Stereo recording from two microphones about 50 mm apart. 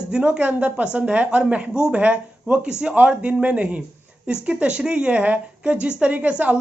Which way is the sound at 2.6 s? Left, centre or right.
Centre.